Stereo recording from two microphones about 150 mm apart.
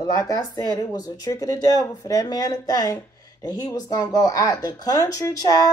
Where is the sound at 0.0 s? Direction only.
25° left (ahead or behind).